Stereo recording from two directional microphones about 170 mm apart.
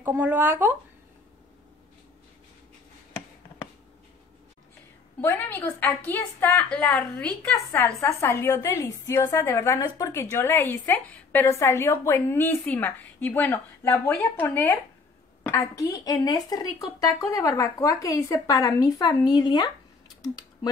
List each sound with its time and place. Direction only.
0.0 s speech: 10° right (ahead or behind)
5.2 s a woman's voice: 10° left (ahead or behind); by 19.7 s 25° left (ahead or behind)